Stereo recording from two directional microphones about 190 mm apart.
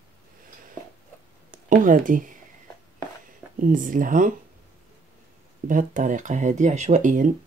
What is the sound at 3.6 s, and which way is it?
Speech, 45° right (ahead or behind).